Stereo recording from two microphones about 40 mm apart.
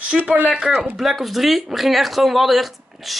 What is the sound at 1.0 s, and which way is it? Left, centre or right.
Speech, centre.